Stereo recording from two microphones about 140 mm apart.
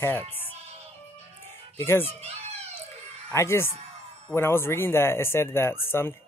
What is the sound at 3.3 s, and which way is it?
Speech, 20° left (ahead or behind).